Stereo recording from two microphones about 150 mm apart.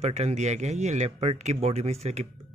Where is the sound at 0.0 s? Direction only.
45° right (ahead or behind).